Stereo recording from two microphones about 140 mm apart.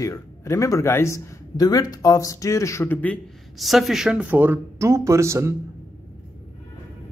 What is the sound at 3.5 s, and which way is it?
Speech, centre (ahead or behind).